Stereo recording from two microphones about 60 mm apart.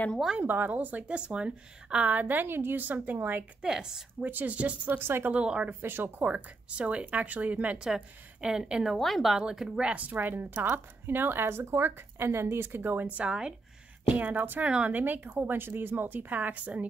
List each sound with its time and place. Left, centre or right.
0.4 s a woman's voice: right
3.6 s speech: centre
4.2 s a woman's voice: right
4.9 s speech: right
5.3 s a woman's voice: centre
5.7 s speech: right
6.2 s a woman's voice: right
7.8 s speech: centre
8.8 s a woman's voice: centre
9.4 s speech: centre
10.2 s speech: right; by 13.6 s centre
14.1 s a woman's voice: right